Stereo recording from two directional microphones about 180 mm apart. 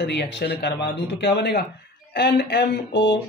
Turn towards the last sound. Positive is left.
turn(degrees=70)  # may be behind; listen again after turning